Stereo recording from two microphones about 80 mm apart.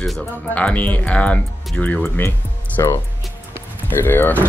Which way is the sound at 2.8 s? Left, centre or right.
Left.